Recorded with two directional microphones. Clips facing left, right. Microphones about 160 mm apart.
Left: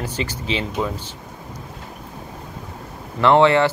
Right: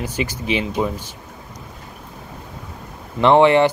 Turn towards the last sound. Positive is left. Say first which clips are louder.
# right 2 dB
turn(degrees=-15)  # may be behind; listen again after turning